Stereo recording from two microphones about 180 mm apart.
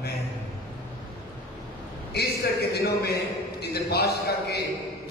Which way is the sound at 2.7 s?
60° left (ahead or behind).